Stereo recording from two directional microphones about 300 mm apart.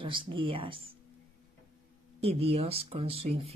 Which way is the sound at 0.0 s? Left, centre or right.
Centre.